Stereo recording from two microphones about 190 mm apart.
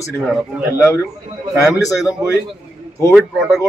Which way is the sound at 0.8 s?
15° left (ahead or behind).